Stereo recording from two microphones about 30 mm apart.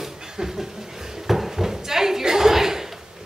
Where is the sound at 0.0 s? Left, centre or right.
Centre.